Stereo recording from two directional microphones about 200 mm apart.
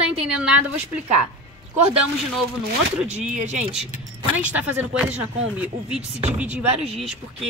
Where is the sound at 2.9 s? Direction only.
5° right (ahead or behind).